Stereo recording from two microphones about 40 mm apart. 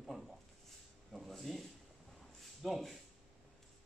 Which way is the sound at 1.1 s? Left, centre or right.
Centre.